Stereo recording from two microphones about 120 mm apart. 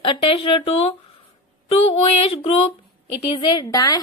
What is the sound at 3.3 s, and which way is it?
Speech, 35° left (ahead or behind).